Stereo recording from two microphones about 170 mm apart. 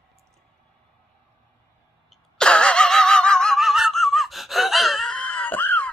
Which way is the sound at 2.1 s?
5° left (ahead or behind).